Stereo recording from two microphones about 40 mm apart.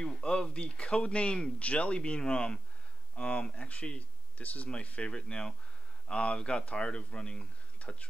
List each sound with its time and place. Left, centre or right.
0.0 s speech: left